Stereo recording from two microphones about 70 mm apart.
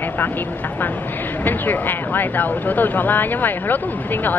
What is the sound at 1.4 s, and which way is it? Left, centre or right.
Speech, left.